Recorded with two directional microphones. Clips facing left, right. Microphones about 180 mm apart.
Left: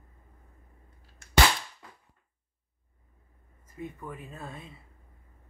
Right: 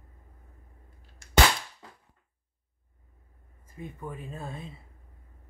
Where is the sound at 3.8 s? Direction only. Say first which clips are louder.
Even; 25° right (ahead or behind).